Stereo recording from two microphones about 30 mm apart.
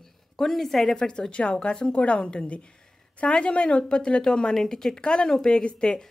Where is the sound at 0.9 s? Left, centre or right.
Left.